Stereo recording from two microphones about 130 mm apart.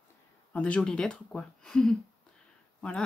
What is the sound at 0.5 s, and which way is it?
Speech, 10° left (ahead or behind).